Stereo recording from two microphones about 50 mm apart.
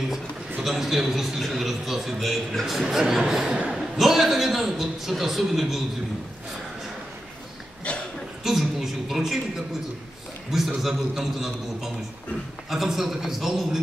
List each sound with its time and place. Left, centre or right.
0.1 s a man's voice: centre
3.5 s a man's voice: right
3.9 s a man's voice: centre
8.5 s a sound: centre
10.8 s a man's voice: centre